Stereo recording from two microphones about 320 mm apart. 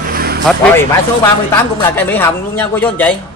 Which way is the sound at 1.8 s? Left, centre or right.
Centre.